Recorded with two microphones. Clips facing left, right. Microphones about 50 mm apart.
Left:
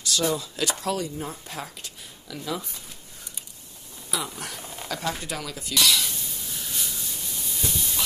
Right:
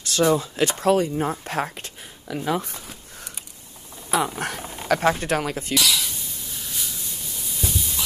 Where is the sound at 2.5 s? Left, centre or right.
Right.